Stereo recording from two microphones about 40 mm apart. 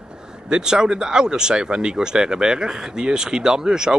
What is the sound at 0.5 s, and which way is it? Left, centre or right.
A man's voice, centre.